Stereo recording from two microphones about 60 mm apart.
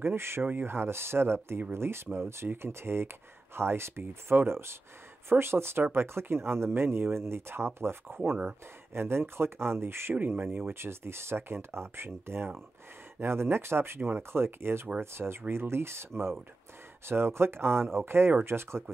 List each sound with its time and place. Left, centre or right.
0.0 s speech: right
10.1 s speech: right